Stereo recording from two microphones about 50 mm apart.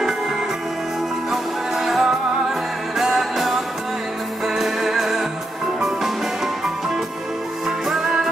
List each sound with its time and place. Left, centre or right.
1.3 s music: centre